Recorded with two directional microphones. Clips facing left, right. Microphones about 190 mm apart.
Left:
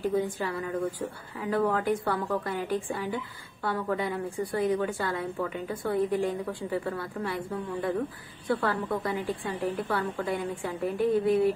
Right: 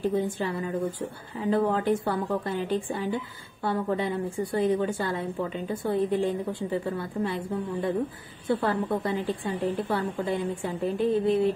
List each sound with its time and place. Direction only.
0.1 s a woman's voice: 25° right (ahead or behind)